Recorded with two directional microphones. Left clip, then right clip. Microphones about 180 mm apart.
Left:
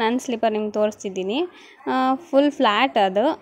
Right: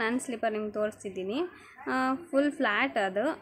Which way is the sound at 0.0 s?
30° left (ahead or behind).